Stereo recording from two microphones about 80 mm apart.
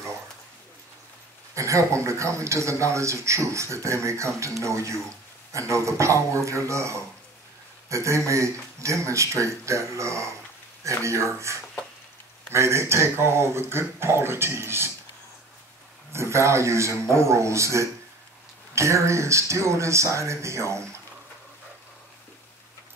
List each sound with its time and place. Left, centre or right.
1.5 s speech: right
16.1 s speech: right